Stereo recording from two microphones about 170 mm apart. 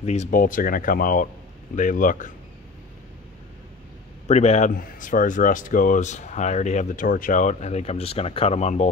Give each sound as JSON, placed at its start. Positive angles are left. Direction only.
{"t": 0.0, "sound": "speech", "side_deg": 40}
{"t": 4.3, "sound": "speech", "side_deg": 40}